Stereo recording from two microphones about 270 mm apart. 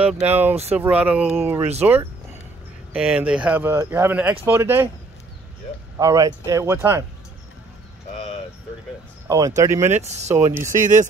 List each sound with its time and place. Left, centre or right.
0.0 s speech: centre
5.9 s speech: centre
9.6 s speech: centre
10.0 s speech: right
10.3 s speech: centre
10.8 s speech: right